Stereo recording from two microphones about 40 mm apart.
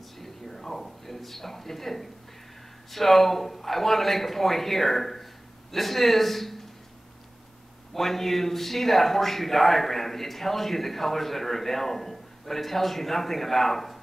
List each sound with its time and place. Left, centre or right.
0.2 s a sound: centre
2.9 s speech: centre
7.9 s speech: centre